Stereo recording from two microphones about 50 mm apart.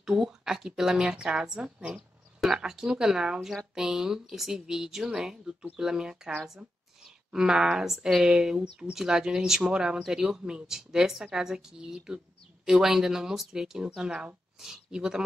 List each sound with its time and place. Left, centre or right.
0.0 s speech: centre
2.0 s speech: centre